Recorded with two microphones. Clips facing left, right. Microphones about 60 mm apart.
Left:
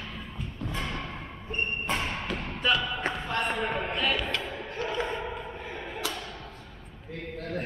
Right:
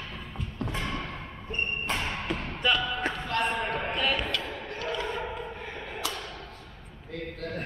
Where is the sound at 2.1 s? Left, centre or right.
Centre.